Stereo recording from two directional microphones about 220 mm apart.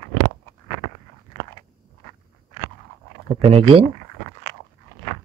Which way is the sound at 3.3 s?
25° right (ahead or behind).